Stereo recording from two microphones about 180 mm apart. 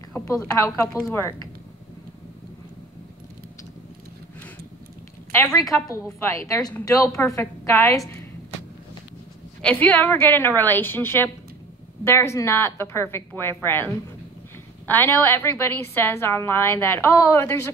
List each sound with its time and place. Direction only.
0.1 s a woman's voice: 15° left (ahead or behind)
5.3 s a woman's voice: 15° left (ahead or behind)
9.6 s a woman's voice: 5° left (ahead or behind)